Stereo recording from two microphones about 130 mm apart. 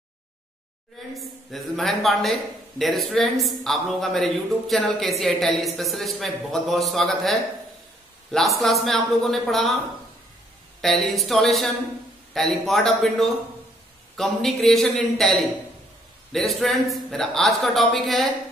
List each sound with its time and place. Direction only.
1.1 s a man's voice: centre (ahead or behind)
10.8 s a man's voice: centre (ahead or behind)